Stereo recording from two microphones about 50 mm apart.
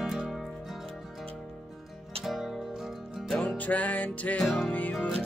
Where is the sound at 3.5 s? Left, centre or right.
Left.